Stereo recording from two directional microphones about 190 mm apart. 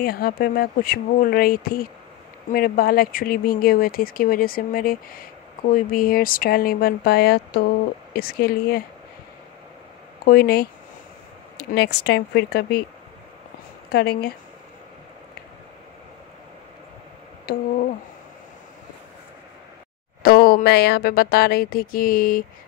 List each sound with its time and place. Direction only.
0.0 s speech: 55° left (ahead or behind)
10.2 s speech: 55° left (ahead or behind)
13.8 s speech: 55° left (ahead or behind)
17.5 s speech: 55° left (ahead or behind)
20.2 s speech: 55° left (ahead or behind)